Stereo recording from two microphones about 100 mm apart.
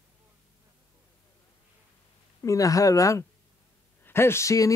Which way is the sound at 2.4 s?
35° left (ahead or behind).